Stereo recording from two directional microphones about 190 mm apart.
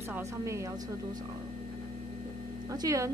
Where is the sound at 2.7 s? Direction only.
20° right (ahead or behind).